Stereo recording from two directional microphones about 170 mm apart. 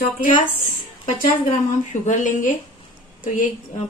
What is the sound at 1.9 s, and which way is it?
A woman's voice, 45° left (ahead or behind).